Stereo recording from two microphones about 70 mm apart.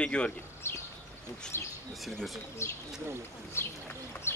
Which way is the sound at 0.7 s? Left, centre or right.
Left.